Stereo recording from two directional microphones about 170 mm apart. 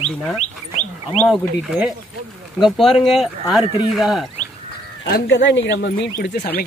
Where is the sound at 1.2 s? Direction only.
Centre (ahead or behind).